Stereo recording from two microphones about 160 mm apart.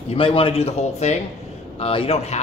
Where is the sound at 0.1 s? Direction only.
35° left (ahead or behind).